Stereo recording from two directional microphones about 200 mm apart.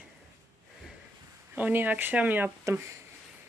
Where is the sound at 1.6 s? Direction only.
10° right (ahead or behind).